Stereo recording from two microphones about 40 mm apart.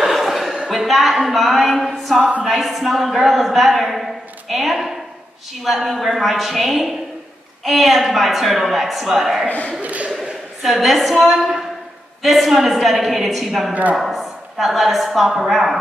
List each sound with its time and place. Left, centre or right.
0.0 s a sound: centre
0.7 s a woman's voice: centre
9.8 s speech: right
10.6 s a woman's voice: centre